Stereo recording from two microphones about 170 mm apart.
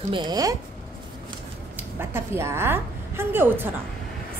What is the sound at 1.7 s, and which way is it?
A woman's voice, 15° right (ahead or behind).